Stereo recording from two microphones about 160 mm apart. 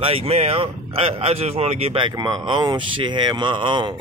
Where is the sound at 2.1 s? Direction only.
25° right (ahead or behind).